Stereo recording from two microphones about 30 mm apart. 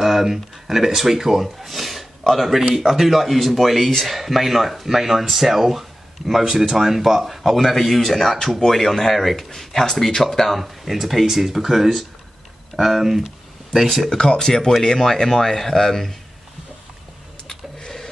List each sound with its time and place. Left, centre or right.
0.0 s speech: centre
10.6 s speech: centre
13.7 s speech: centre
14.1 s speech: centre
17.5 s a sound: left